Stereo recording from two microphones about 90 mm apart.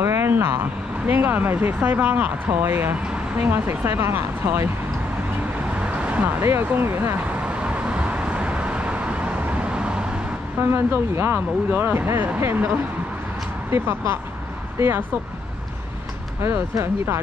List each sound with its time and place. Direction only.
0.0 s vehicle: 30° right (ahead or behind)
1.0 s speech: 20° right (ahead or behind)
5.8 s vehicle: 15° right (ahead or behind)
6.4 s speech: 25° right (ahead or behind)
7.4 s vehicle: 15° right (ahead or behind)
10.6 s speech: 30° right (ahead or behind)
16.4 s speech: 30° right (ahead or behind)